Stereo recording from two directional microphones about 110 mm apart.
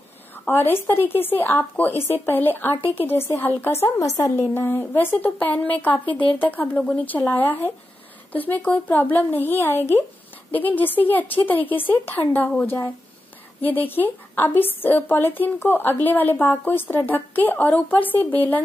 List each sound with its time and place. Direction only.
0.5 s a woman's voice: 20° left (ahead or behind)